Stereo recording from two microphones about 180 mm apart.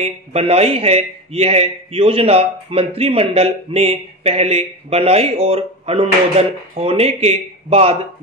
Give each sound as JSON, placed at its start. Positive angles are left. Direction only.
{"t": 0.0, "sound": "speech", "side_deg": -35}